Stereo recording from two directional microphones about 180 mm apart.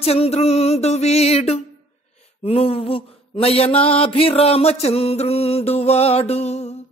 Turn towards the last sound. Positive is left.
turn(degrees=35)  # may be behind; listen again after turning